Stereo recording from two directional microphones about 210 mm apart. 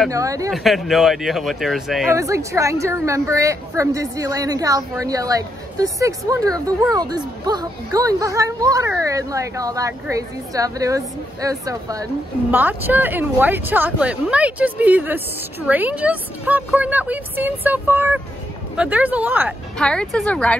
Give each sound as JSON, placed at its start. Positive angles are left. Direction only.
{"t": 0.1, "sound": "speech", "side_deg": -15}
{"t": 0.5, "sound": "speech", "side_deg": 0}
{"t": 2.1, "sound": "speech", "side_deg": -15}
{"t": 19.8, "sound": "speech", "side_deg": 5}